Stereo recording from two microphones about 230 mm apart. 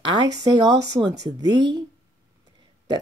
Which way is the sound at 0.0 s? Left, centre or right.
Centre.